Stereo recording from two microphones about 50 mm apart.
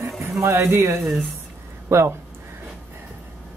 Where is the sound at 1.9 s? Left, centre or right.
Right.